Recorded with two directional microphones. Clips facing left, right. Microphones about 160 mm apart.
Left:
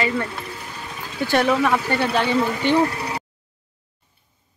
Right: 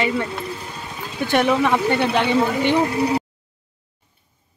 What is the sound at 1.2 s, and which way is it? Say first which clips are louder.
Speech: right 1 dB; 15° right (ahead or behind).